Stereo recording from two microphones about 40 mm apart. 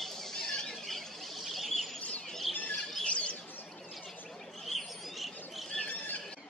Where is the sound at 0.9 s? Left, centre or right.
Centre.